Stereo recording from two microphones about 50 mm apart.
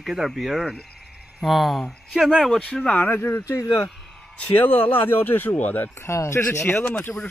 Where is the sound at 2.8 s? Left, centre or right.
Left.